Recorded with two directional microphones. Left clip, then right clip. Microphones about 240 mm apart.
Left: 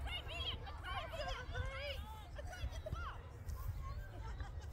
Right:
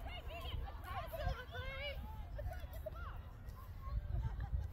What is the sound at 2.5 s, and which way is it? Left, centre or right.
Music, left.